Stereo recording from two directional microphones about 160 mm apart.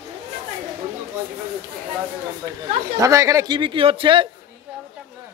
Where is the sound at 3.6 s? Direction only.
30° right (ahead or behind).